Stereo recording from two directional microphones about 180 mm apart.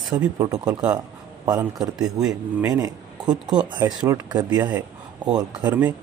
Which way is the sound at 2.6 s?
20° right (ahead or behind).